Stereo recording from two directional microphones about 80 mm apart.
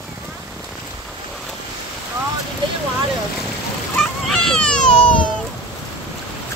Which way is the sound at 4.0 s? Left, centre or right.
Centre.